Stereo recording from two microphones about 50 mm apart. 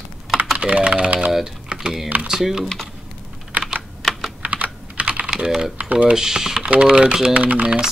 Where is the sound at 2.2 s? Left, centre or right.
Centre.